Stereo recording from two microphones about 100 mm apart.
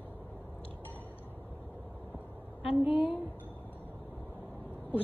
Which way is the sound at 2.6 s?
90° left.